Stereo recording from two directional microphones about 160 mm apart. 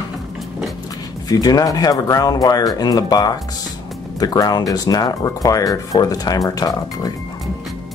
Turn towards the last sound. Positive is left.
turn(degrees=25)  # may be behind; listen again after turning